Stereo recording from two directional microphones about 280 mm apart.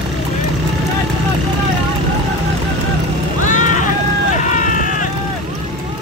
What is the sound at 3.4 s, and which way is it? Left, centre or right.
Vehicle, left.